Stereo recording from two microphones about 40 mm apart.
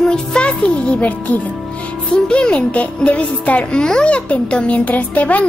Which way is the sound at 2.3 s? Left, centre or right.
Left.